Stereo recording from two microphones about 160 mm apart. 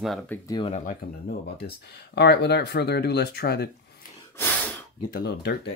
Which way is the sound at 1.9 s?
90° left.